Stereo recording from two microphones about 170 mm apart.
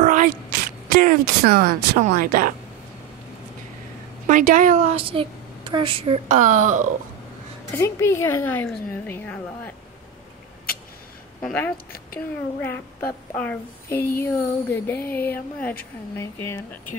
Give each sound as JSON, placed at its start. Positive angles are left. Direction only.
{"t": 0.0, "sound": "a sound", "side_deg": -50}
{"t": 2.0, "sound": "speech", "side_deg": -55}
{"t": 4.3, "sound": "a woman's voice", "side_deg": -50}
{"t": 7.7, "sound": "a woman's voice", "side_deg": 15}
{"t": 11.7, "sound": "a woman's voice", "side_deg": 60}
{"t": 12.5, "sound": "child singing", "side_deg": 15}
{"t": 14.2, "sound": "a woman's voice", "side_deg": 15}